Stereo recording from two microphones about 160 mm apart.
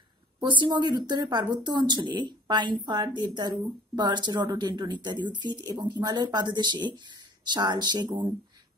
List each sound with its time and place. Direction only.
0.4 s speech: 30° right (ahead or behind)